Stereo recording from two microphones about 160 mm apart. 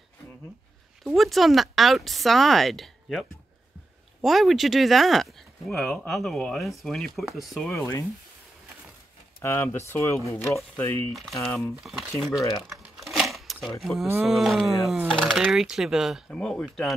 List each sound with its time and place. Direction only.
1.0 s speech: centre (ahead or behind)
9.4 s speech: 15° left (ahead or behind)
11.1 s speech: centre (ahead or behind)
12.6 s a sound: centre (ahead or behind)
13.7 s speech: centre (ahead or behind)